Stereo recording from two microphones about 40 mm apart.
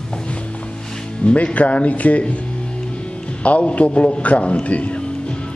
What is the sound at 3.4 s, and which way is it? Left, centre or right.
A man's voice, left.